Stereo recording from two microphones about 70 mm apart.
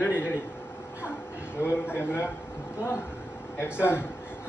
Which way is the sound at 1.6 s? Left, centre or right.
Left.